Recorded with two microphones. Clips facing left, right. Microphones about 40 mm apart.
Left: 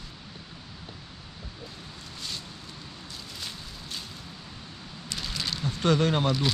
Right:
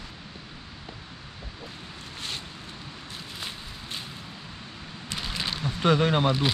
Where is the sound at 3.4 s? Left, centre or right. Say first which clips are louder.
Right 2 dB; right.